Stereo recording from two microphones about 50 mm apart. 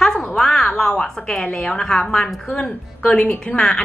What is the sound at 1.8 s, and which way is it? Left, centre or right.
Speech, centre.